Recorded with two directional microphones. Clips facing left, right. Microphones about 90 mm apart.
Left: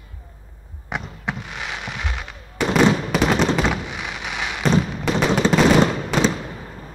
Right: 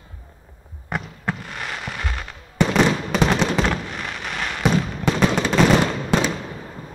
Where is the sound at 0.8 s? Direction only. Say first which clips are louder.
Right 1 dB; centre (ahead or behind).